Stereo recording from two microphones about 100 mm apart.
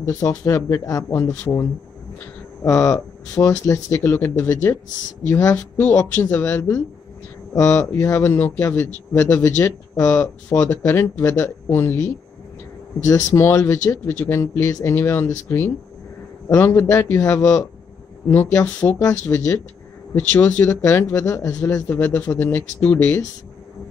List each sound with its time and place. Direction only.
0.0 s speech: 30° left (ahead or behind)
5.8 s speech: 15° left (ahead or behind)
18.3 s speech: 20° left (ahead or behind)
18.9 s speech: 35° left (ahead or behind)
20.2 s speech: 15° left (ahead or behind)
21.8 s speech: 15° left (ahead or behind)